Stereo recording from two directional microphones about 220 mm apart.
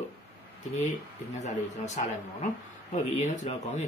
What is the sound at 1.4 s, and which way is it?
Speech, 35° left (ahead or behind).